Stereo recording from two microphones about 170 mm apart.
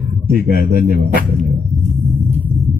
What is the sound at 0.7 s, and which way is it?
Speech, 55° right (ahead or behind).